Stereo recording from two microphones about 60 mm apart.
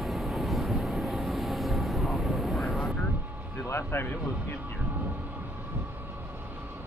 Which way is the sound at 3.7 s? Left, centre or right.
Left.